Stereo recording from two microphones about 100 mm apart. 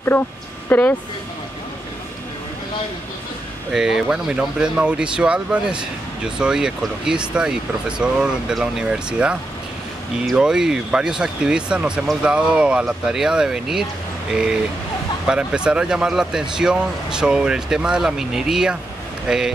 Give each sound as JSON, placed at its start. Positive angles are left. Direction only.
{"t": 0.7, "sound": "speech", "side_deg": 15}
{"t": 3.7, "sound": "speech", "side_deg": -5}